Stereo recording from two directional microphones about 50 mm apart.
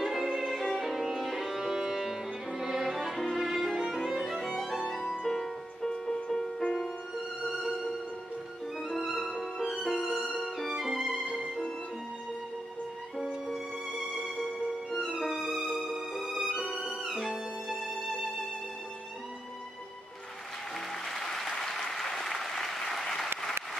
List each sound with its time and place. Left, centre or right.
0.0 s music: centre
3.2 s violin: centre
3.4 s violin: centre
5.2 s music: centre
8.8 s music: centre
13.2 s music: centre
16.3 s music: centre
21.1 s applause: centre